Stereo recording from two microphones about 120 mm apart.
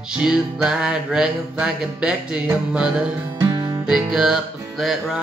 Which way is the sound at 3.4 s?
35° right (ahead or behind).